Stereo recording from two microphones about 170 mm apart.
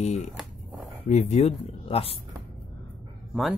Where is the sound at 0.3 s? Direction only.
5° right (ahead or behind).